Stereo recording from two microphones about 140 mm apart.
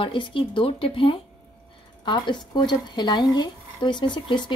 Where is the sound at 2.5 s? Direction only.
35° left (ahead or behind).